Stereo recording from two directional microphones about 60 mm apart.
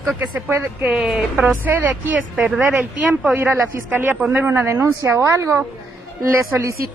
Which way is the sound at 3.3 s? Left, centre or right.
Right.